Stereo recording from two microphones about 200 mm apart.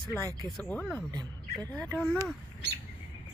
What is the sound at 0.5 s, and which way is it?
Speech, 5° left (ahead or behind).